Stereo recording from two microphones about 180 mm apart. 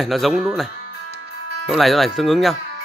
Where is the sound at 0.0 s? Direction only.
Centre (ahead or behind).